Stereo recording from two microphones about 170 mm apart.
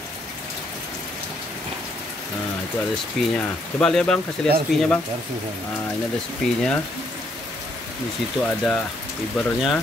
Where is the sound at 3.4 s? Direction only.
5° left (ahead or behind).